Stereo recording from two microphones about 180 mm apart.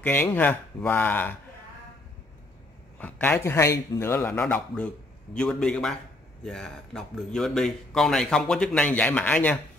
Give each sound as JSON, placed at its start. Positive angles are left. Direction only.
{"t": 0.0, "sound": "a man's voice", "side_deg": 10}
{"t": 3.0, "sound": "a man's voice", "side_deg": 10}